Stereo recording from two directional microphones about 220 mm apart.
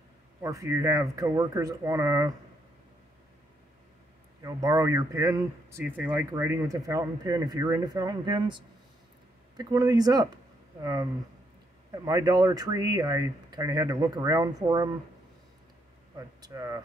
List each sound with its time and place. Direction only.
0.4 s a man's voice: 15° right (ahead or behind)
4.4 s a man's voice: 15° right (ahead or behind)
16.2 s a man's voice: 15° right (ahead or behind)